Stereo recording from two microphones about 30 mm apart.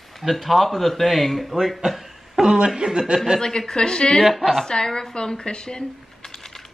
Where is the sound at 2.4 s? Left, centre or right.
Right.